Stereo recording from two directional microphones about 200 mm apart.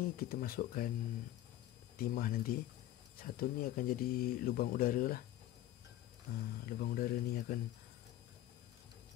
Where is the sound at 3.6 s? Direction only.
45° left (ahead or behind).